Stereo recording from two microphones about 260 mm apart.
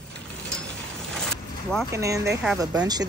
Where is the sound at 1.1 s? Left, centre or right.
Centre.